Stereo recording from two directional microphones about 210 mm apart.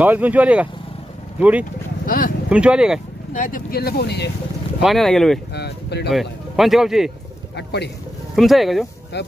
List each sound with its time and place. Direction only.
0.0 s speech: 10° right (ahead or behind)
2.0 s speech: 40° left (ahead or behind)
2.5 s speech: 5° right (ahead or behind)
3.3 s speech: 40° left (ahead or behind)
4.8 s speech: centre (ahead or behind)
5.5 s speech: 50° left (ahead or behind)
6.0 s speech: centre (ahead or behind)
7.5 s speech: 55° left (ahead or behind)
8.4 s speech: centre (ahead or behind)
9.1 s speech: 55° left (ahead or behind)